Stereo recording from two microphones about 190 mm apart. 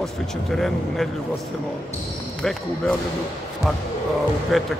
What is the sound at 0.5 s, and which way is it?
Speech, centre (ahead or behind).